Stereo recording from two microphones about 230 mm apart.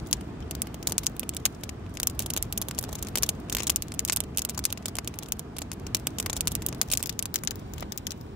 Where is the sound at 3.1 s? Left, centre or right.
Centre.